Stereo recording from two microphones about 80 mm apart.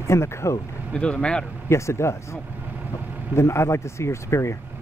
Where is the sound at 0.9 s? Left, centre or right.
Centre.